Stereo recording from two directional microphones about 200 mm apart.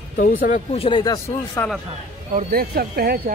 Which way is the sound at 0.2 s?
40° left (ahead or behind).